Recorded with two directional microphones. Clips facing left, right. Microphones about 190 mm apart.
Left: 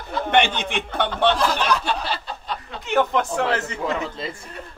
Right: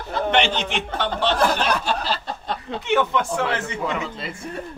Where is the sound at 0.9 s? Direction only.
55° left (ahead or behind).